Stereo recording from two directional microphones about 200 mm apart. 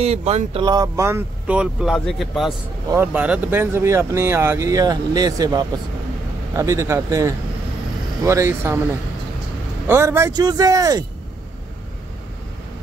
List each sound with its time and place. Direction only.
0.0 s speech: 30° right (ahead or behind); by 8.7 s 10° right (ahead or behind)
9.8 s speech: 15° right (ahead or behind)